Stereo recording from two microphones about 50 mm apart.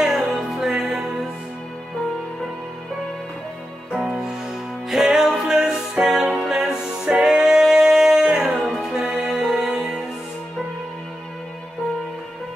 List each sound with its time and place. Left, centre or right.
0.0 s music: centre
3.9 s music: centre
8.5 s music: centre
8.9 s music: centre